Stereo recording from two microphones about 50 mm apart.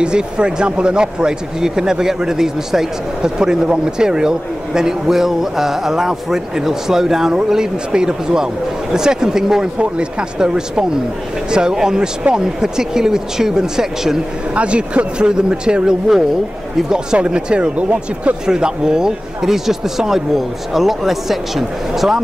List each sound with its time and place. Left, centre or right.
0.0 s speech: centre
14.5 s speech: right; by 22.2 s centre